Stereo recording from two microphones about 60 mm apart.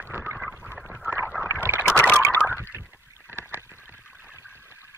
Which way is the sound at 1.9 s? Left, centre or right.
Centre.